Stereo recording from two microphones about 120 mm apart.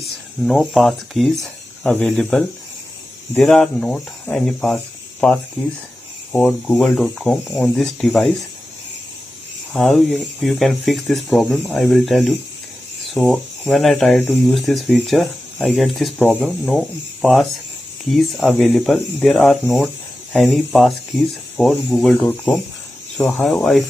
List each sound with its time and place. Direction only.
0.0 s speech: centre (ahead or behind)
9.8 s speech: 5° left (ahead or behind)
11.4 s speech: 15° left (ahead or behind)
11.7 s speech: centre (ahead or behind)